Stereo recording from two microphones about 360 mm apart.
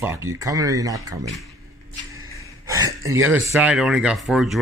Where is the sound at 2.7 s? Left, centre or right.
Centre.